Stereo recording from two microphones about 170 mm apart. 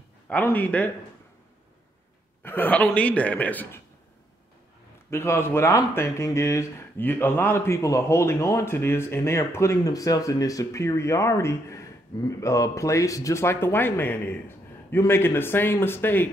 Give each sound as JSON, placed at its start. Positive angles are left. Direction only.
{"t": 0.3, "sound": "speech", "side_deg": 10}
{"t": 2.4, "sound": "speech", "side_deg": 10}
{"t": 5.1, "sound": "speech", "side_deg": 15}